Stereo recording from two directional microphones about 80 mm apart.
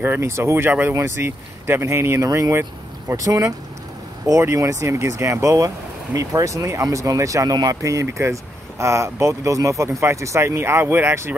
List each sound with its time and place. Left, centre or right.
0.0 s speech: right
2.2 s speech: right